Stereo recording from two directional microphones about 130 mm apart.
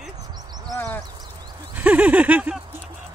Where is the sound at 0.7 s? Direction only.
15° left (ahead or behind).